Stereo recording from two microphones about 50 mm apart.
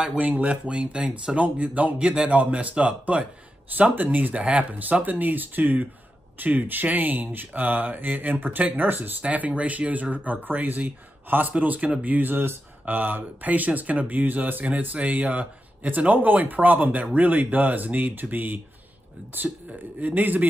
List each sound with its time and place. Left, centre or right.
0.0 s speech: right
9.2 s speech: right